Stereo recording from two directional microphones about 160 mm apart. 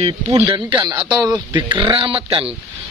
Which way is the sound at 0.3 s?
25° right (ahead or behind).